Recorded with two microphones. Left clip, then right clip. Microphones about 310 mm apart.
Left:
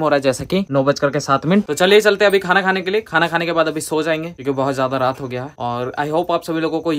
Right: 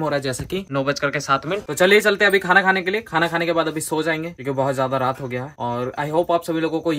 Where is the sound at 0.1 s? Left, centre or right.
Centre.